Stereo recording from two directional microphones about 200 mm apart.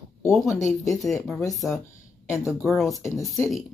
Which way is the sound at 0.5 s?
15° left (ahead or behind).